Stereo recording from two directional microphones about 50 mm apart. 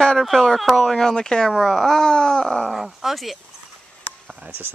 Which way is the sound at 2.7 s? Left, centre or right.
Centre.